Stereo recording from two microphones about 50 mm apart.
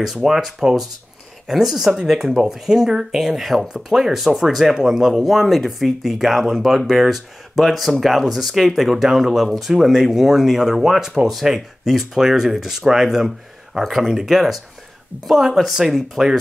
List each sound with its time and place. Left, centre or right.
0.0 s speech: centre